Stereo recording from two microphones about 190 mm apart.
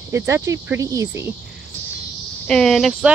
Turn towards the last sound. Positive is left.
turn(degrees=0)  # may be behind; listen again after turning